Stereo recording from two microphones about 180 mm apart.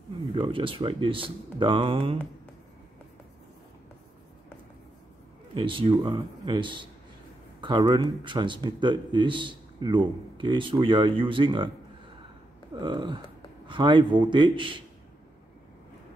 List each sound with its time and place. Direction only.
0.3 s a man's voice: 25° right (ahead or behind)
5.5 s a man's voice: 25° right (ahead or behind)
12.7 s a man's voice: 25° right (ahead or behind)